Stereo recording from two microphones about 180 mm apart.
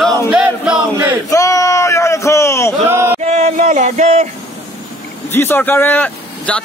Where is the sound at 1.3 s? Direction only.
15° left (ahead or behind).